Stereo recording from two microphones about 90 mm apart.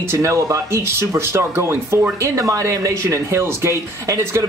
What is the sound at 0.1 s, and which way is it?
Speech, 35° right (ahead or behind).